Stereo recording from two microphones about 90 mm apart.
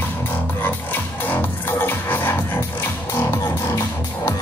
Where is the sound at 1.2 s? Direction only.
20° left (ahead or behind).